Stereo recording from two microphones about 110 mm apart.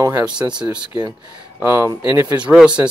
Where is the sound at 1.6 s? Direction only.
20° right (ahead or behind).